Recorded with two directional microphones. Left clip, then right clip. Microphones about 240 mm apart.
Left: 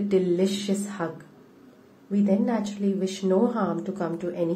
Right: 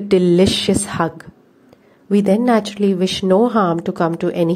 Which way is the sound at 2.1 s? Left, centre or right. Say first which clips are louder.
Right 11 dB; right.